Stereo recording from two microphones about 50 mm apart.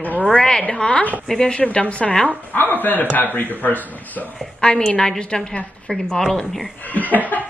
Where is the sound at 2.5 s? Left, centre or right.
Left.